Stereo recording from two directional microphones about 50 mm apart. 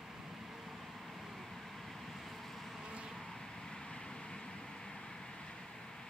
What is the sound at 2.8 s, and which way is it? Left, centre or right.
Vehicle, centre.